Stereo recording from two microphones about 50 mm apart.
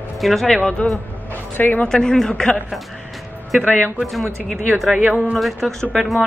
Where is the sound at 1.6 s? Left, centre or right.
Left.